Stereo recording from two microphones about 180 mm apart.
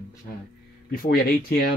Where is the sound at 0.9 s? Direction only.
55° left (ahead or behind).